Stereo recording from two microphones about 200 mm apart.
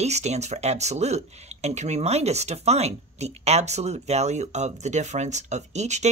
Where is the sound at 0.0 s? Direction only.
35° right (ahead or behind).